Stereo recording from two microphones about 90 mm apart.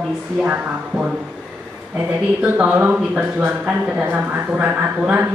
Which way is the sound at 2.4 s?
15° right (ahead or behind).